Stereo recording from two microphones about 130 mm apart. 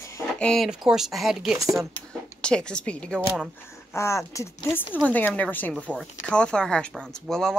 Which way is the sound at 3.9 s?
20° left (ahead or behind).